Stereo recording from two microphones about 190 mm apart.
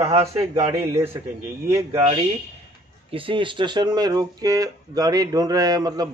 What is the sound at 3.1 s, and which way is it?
Speech, 30° right (ahead or behind).